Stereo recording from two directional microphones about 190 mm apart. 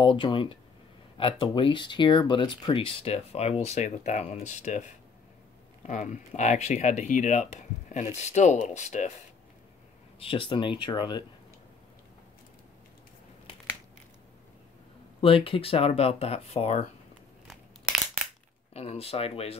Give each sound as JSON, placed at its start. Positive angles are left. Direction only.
{"t": 0.0, "sound": "speech", "side_deg": 25}
{"t": 5.9, "sound": "speech", "side_deg": 40}
{"t": 10.1, "sound": "speech", "side_deg": 30}
{"t": 15.1, "sound": "speech", "side_deg": 30}
{"t": 17.5, "sound": "crumpling", "side_deg": 0}
{"t": 18.7, "sound": "speech", "side_deg": 30}